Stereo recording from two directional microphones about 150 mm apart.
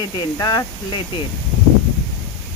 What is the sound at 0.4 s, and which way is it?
Speech, 25° left (ahead or behind).